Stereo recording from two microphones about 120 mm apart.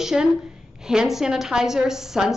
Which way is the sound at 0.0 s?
5° right (ahead or behind).